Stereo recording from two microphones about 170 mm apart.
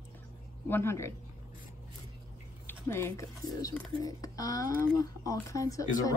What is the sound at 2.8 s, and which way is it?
Speech, 15° left (ahead or behind).